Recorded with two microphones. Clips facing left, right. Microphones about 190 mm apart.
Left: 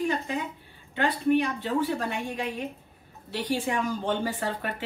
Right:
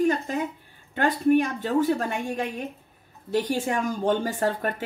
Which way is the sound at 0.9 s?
45° right (ahead or behind).